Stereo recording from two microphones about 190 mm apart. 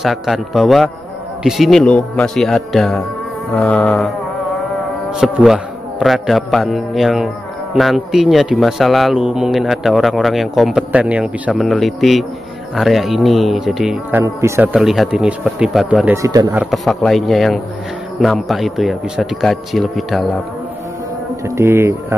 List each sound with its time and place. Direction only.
0.0 s a man's voice: centre (ahead or behind)
5.2 s a man's voice: centre (ahead or behind)
14.2 s a man's voice: 15° right (ahead or behind)
16.2 s speech: 20° right (ahead or behind)
16.5 s a man's voice: centre (ahead or behind)
21.5 s a man's voice: 15° right (ahead or behind)